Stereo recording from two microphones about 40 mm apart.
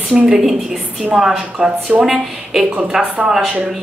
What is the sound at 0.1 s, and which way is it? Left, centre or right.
A woman's voice, centre.